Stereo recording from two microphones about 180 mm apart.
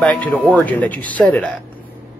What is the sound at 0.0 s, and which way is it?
Speech, 10° left (ahead or behind).